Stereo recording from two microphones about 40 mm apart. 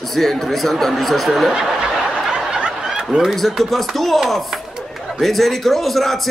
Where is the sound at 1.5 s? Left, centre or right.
Centre.